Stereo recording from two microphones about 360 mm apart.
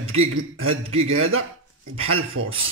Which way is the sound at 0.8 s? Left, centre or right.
Centre.